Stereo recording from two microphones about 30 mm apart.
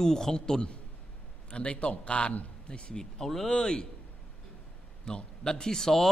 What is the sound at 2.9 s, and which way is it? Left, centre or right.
Speech, centre.